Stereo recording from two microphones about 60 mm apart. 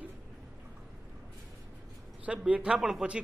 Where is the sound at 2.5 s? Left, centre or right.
Centre.